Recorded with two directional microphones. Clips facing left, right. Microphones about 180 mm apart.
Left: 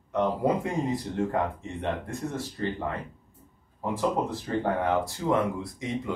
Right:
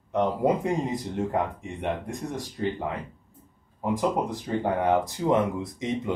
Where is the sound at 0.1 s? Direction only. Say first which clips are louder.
Right 2 dB; 20° right (ahead or behind).